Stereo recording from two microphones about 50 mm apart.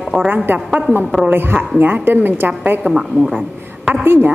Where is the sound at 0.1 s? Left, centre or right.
Centre.